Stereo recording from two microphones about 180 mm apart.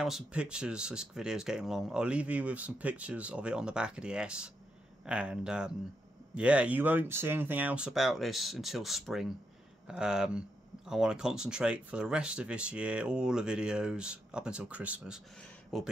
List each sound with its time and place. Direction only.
0.0 s speech: 5° right (ahead or behind)